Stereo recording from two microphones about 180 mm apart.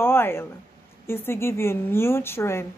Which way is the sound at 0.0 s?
10° left (ahead or behind).